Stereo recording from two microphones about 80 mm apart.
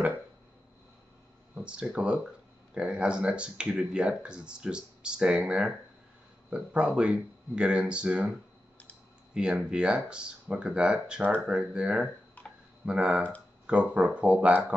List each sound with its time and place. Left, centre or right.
1.5 s speech: centre
12.4 s tick-tock: centre
12.8 s speech: centre